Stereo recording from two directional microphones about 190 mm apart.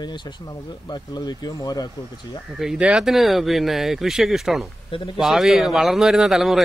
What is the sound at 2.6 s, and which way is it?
Speech, 5° right (ahead or behind).